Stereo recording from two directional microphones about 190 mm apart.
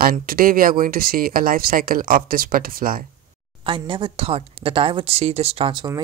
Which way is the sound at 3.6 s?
25° right (ahead or behind).